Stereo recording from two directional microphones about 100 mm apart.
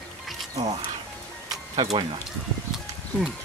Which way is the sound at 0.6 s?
90° right.